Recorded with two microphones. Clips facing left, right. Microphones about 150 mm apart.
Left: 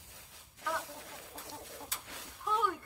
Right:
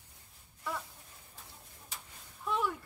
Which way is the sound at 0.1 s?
90° left.